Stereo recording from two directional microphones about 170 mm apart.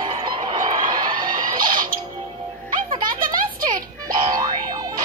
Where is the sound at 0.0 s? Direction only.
25° right (ahead or behind).